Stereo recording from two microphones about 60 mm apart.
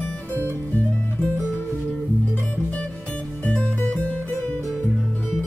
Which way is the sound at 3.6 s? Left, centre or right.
Left.